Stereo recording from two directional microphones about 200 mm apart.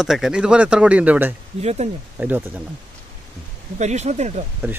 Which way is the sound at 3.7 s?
35° right (ahead or behind).